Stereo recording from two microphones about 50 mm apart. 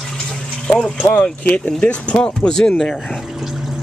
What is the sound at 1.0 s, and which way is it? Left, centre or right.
Speech, left.